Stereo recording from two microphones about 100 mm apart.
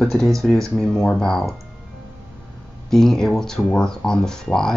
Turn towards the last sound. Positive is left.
turn(degrees=5)  # may be behind; listen again after turning